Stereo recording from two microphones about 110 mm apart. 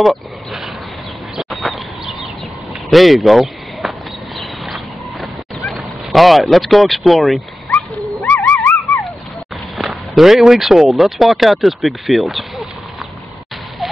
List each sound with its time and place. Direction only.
1.3 s bird: centre (ahead or behind)
2.9 s speech: centre (ahead or behind)
4.4 s a sound: centre (ahead or behind)
5.7 s speech: centre (ahead or behind)
7.7 s dog: 15° left (ahead or behind)
9.8 s speech: centre (ahead or behind)